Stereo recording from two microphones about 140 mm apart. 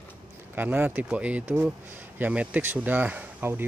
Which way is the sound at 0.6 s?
15° right (ahead or behind).